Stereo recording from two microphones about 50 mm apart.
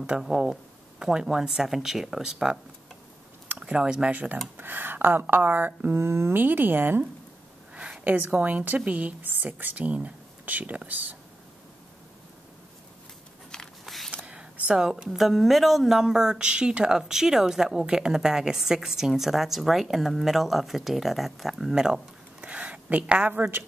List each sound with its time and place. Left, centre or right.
0.2 s speech: centre
4.1 s a woman's voice: right
4.6 s speech: right
5.9 s speech: right
6.3 s speech: right
8.2 s a woman's voice: right
13.8 s a sound: centre
14.1 s a sound: right
15.0 s a woman's voice: centre
22.5 s a sound: right